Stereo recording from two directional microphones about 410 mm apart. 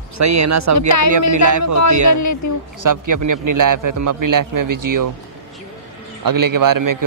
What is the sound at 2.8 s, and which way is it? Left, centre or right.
A man's voice, right.